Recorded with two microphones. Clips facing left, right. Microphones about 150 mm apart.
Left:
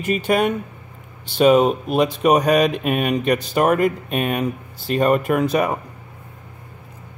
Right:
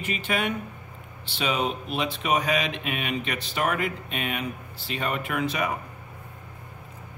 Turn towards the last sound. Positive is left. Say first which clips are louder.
# left 9 dB
turn(degrees=45)  # may be behind; listen again after turning